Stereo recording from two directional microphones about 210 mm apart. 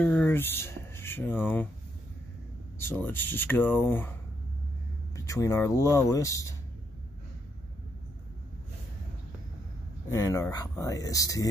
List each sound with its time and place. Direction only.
0.0 s speech: 5° left (ahead or behind)
2.8 s speech: 10° left (ahead or behind)
5.1 s speech: 15° left (ahead or behind)
10.1 s speech: 15° left (ahead or behind)